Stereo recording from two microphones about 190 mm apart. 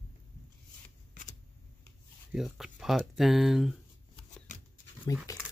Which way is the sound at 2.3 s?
Centre (ahead or behind).